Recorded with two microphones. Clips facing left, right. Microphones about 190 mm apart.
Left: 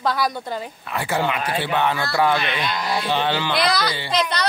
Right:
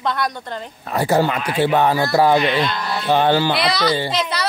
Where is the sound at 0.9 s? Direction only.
40° right (ahead or behind).